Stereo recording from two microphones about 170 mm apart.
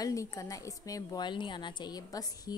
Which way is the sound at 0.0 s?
20° left (ahead or behind).